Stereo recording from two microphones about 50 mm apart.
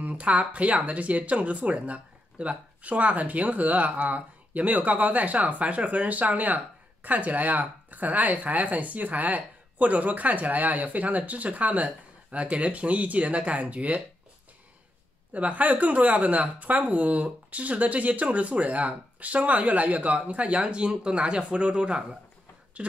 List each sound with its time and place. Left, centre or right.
0.0 s speech: right
15.3 s speech: right